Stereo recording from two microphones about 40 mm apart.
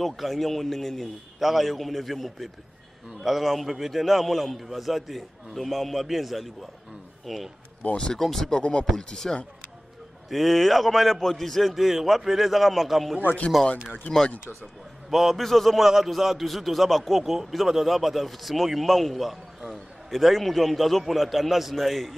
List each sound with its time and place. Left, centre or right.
0.0 s a man's voice: centre
1.4 s a man's voice: centre
7.9 s speech: left
8.2 s speech: centre
8.5 s speech: left
10.3 s a man's voice: centre
15.0 s a man's voice: centre